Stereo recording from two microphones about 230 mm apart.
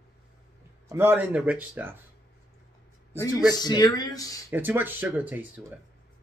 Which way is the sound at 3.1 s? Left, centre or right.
Centre.